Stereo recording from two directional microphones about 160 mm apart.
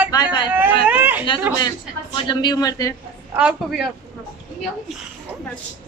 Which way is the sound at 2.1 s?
30° left (ahead or behind).